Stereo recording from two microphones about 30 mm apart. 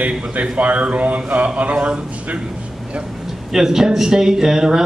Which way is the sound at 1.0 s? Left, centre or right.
Right.